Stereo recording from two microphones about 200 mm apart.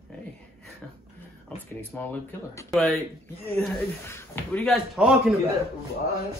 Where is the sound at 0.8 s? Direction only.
5° left (ahead or behind).